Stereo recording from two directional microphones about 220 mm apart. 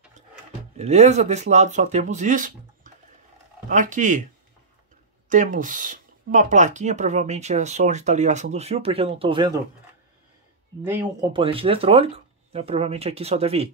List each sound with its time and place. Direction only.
0.7 s speech: 30° right (ahead or behind)
5.3 s speech: 35° right (ahead or behind)
10.9 s speech: 10° right (ahead or behind)
11.3 s speech: 25° right (ahead or behind)